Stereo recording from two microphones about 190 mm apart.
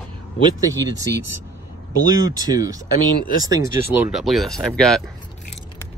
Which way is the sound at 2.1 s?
20° right (ahead or behind).